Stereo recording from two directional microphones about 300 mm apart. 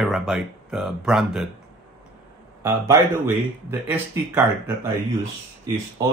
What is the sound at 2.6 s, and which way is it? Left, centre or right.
Speech, centre.